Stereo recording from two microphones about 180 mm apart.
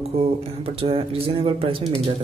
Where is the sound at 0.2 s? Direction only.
35° right (ahead or behind).